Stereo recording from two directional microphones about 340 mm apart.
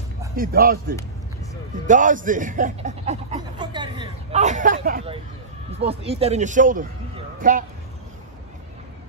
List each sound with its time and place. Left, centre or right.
0.4 s a man's voice: right